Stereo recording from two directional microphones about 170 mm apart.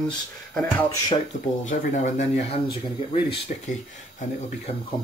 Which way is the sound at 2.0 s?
45° left (ahead or behind).